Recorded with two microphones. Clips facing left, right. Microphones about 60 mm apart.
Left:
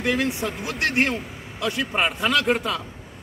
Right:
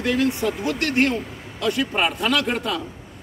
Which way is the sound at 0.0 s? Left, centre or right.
Centre.